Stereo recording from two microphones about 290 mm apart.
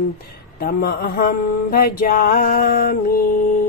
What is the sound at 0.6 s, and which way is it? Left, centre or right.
Music, left.